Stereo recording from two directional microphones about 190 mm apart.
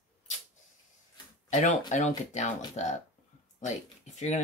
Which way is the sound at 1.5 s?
40° left (ahead or behind).